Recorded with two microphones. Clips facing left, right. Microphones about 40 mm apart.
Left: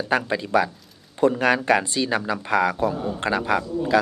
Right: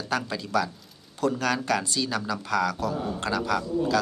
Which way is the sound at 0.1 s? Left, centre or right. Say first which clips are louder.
Left 5 dB; left.